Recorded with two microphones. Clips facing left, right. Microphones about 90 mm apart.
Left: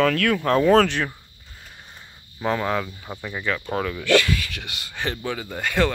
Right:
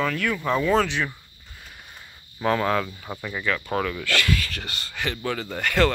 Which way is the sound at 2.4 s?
10° left (ahead or behind).